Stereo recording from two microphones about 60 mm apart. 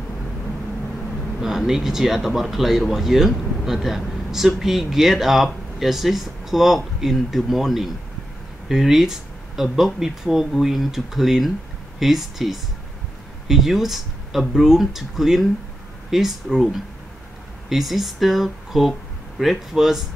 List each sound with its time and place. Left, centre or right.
1.4 s speech: centre